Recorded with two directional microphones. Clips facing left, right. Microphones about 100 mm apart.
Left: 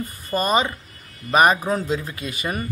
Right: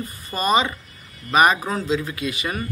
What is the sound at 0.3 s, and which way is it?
A man's voice, 45° left (ahead or behind).